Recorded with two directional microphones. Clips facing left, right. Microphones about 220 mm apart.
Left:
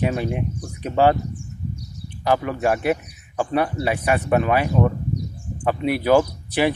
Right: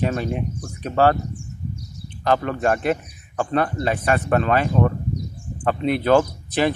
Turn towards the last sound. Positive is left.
turn(degrees=10)  # may be behind; listen again after turning